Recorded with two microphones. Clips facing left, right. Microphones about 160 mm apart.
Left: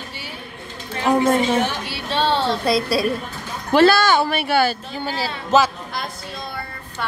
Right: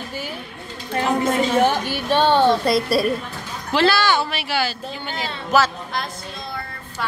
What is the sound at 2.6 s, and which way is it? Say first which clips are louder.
Speech: right 1 dB; centre (ahead or behind).